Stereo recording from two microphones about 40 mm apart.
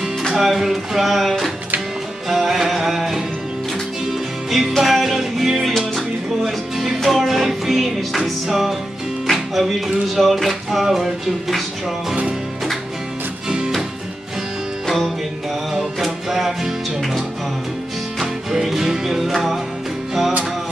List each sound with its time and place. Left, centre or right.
0.3 s music: centre
9.3 s speech: centre
10.0 s music: centre
16.0 s music: centre
18.5 s music: centre